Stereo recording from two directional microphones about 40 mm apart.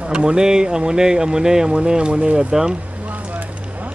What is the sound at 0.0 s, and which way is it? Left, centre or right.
Speech, right.